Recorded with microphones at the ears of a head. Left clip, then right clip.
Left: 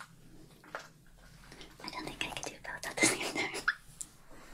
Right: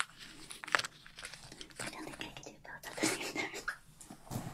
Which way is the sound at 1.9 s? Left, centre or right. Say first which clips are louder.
Left 6 dB; left.